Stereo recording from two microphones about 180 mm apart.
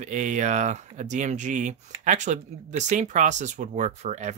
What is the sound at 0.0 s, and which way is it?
Speech, 45° right (ahead or behind).